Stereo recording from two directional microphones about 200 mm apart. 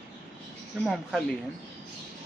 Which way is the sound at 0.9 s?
Centre (ahead or behind).